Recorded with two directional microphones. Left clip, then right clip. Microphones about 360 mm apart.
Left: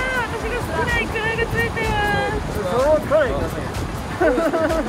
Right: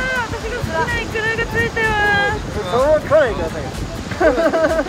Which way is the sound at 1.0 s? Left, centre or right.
Centre.